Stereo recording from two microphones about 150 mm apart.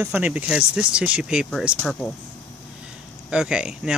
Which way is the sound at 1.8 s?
10° left (ahead or behind).